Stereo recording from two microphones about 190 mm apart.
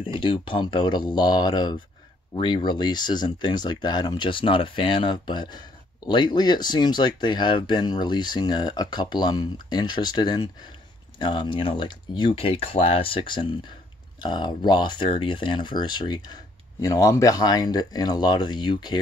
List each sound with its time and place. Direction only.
0.0 s speech: 25° left (ahead or behind)